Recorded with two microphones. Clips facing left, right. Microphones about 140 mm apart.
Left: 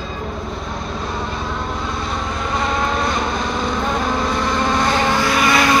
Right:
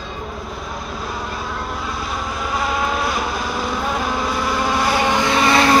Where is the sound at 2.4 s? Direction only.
5° right (ahead or behind).